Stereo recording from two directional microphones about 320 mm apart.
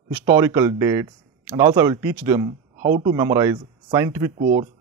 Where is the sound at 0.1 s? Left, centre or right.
Centre.